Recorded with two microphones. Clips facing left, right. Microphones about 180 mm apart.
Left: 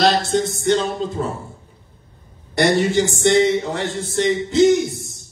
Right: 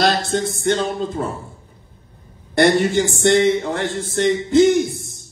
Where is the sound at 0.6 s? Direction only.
55° right (ahead or behind).